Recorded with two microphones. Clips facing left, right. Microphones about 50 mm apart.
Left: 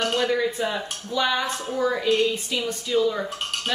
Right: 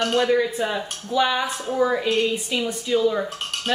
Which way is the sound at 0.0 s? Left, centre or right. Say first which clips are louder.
Right 3 dB; centre.